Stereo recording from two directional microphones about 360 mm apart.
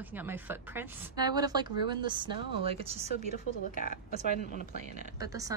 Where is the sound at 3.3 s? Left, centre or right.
Left.